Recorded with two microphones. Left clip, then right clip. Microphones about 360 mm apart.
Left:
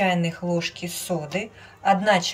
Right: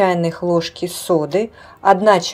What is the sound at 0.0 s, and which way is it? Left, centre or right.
Speech, centre.